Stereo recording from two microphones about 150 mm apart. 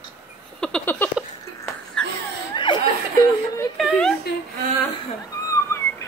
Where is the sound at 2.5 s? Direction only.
30° left (ahead or behind).